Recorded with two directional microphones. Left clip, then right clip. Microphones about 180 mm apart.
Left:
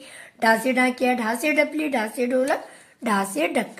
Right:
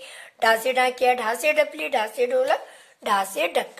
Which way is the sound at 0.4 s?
25° right (ahead or behind).